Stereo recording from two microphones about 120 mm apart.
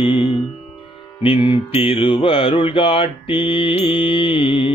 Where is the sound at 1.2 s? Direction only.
45° left (ahead or behind).